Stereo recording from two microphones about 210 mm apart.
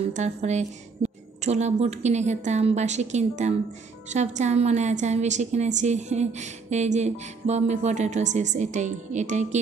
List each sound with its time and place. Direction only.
0.1 s a woman's voice: 35° right (ahead or behind)